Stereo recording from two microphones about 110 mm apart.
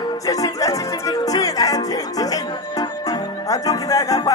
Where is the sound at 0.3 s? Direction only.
30° left (ahead or behind).